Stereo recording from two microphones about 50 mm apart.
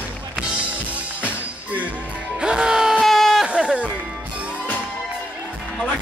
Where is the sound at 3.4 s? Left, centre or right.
Right.